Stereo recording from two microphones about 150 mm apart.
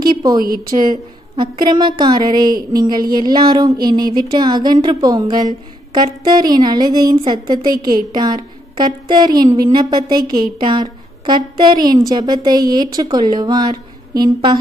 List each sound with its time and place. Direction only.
0.0 s a sound: 30° right (ahead or behind)
0.4 s a woman's voice: 75° right (ahead or behind)
0.8 s a woman's voice: 30° right (ahead or behind)